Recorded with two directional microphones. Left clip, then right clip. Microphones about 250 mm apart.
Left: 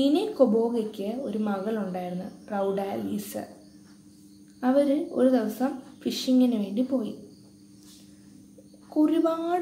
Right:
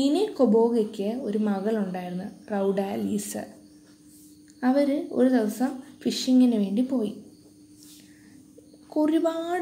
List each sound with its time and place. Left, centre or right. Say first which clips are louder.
0.0 s a woman's voice: left 1 dB; right
4.6 s a woman's voice: left 1 dB; right
8.9 s a woman's voice: even; right